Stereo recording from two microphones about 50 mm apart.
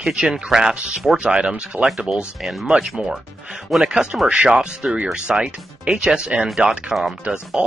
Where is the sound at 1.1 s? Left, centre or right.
Right.